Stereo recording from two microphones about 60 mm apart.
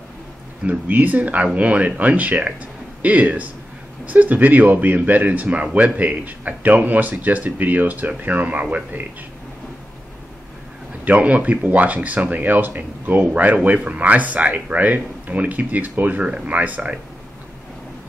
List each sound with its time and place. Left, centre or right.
0.7 s speech: right
11.1 s speech: right